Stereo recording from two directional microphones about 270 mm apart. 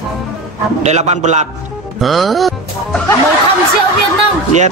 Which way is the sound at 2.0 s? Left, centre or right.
Centre.